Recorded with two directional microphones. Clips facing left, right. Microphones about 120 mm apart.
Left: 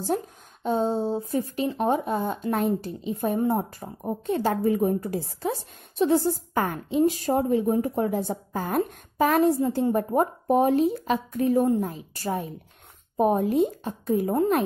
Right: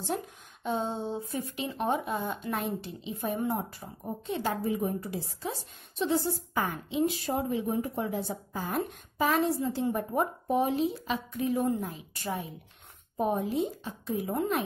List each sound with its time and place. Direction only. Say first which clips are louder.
0.7 s a woman's voice: left 7 dB; 35° left (ahead or behind)
13.2 s a woman's voice: left 7 dB; 55° left (ahead or behind)